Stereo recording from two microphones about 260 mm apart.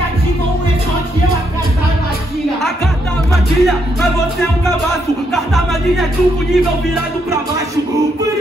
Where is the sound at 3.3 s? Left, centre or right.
Centre.